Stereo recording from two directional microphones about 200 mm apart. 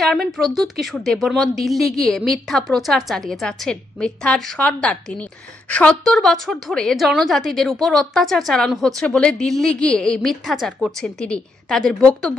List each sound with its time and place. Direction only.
0.0 s a woman's voice: centre (ahead or behind)